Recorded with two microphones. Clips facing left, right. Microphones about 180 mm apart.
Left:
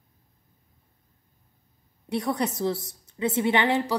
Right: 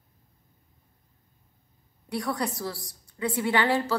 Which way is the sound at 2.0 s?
20° left (ahead or behind).